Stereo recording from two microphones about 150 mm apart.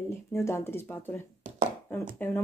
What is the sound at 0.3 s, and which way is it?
Speech, 15° left (ahead or behind).